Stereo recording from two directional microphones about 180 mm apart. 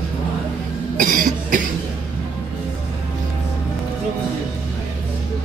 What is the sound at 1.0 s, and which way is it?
Cough, 45° right (ahead or behind).